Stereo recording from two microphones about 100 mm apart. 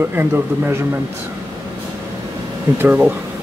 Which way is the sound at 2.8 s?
20° right (ahead or behind).